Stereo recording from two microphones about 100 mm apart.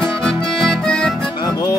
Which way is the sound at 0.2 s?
5° left (ahead or behind).